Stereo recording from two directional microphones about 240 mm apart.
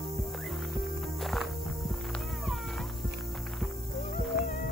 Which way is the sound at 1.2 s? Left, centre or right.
Centre.